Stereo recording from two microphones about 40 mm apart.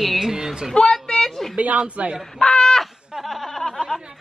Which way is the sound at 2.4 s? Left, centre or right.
Left.